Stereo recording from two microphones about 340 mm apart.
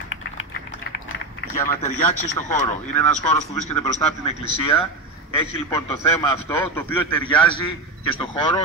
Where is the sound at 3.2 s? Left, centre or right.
Left.